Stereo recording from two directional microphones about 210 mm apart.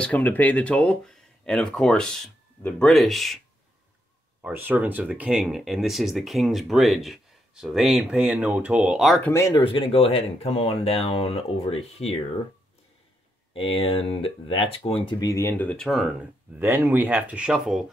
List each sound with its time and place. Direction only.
0.0 s speech: 10° left (ahead or behind)
4.4 s speech: 10° right (ahead or behind)
9.3 s speech: 15° left (ahead or behind)
13.5 s speech: 25° left (ahead or behind); by 17.8 s 5° right (ahead or behind)